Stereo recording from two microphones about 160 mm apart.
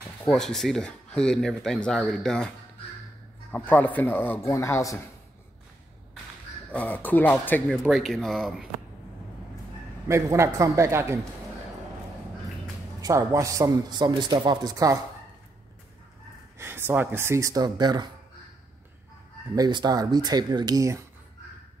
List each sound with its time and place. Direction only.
0.3 s speech: 5° left (ahead or behind)
3.5 s speech: 10° left (ahead or behind)
6.7 s speech: 10° left (ahead or behind)
10.0 s a man's voice: 20° right (ahead or behind)
13.0 s speech: 20° right (ahead or behind)
16.5 s speech: 15° right (ahead or behind)
19.5 s speech: 25° right (ahead or behind)